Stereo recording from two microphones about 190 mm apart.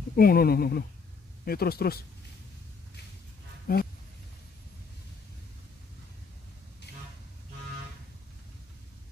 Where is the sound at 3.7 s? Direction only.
50° left (ahead or behind).